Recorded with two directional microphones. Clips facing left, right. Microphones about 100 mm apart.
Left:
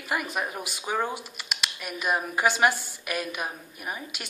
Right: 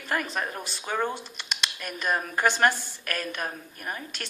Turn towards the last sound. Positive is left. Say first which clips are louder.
# even
turn(degrees=10)  # may be behind; listen again after turning